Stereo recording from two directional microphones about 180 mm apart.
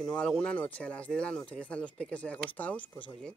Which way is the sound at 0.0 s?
5° left (ahead or behind).